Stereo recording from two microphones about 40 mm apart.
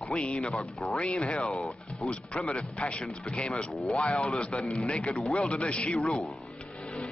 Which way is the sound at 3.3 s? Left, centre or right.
Left.